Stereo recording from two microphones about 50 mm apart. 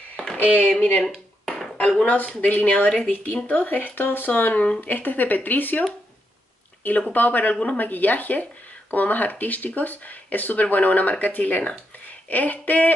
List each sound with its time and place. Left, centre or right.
0.6 s speech: left
1.0 s a sound: centre
1.8 s speech: left
3.4 s speech: left
4.6 s speech: left
4.8 s speech: left